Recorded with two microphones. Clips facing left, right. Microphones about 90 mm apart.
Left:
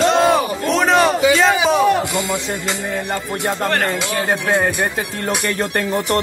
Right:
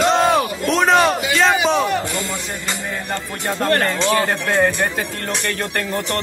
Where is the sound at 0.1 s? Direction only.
Centre (ahead or behind).